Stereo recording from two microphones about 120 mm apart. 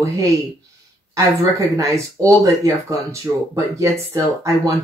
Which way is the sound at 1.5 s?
25° right (ahead or behind).